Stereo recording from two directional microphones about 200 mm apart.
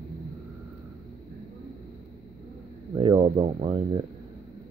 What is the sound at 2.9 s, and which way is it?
Speech, 20° right (ahead or behind).